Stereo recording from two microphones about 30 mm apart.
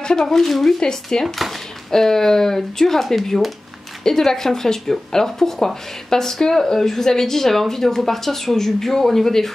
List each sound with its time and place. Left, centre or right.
0.2 s a woman's voice: centre
0.7 s a woman's voice: left; by 3.5 s centre
4.0 s a woman's voice: centre